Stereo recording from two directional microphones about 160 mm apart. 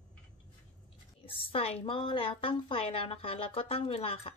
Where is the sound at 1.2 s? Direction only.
35° left (ahead or behind).